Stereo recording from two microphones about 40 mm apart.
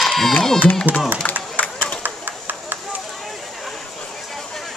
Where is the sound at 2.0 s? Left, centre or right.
Right.